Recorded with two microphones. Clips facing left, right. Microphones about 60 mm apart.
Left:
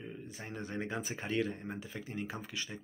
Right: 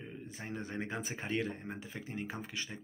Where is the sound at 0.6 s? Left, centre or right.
Right.